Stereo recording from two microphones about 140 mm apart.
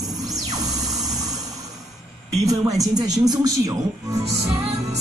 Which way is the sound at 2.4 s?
25° right (ahead or behind).